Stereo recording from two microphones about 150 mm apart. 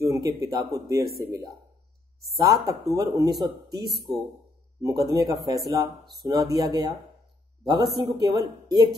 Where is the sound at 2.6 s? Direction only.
25° right (ahead or behind).